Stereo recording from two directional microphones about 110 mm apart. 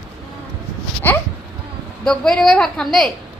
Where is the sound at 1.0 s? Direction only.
15° left (ahead or behind).